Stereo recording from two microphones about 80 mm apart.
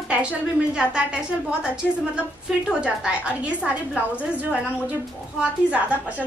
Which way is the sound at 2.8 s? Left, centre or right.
Centre.